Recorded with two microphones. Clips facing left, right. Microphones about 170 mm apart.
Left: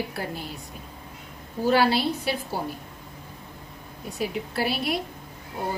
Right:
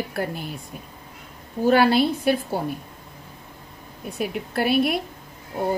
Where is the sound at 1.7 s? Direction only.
50° right (ahead or behind).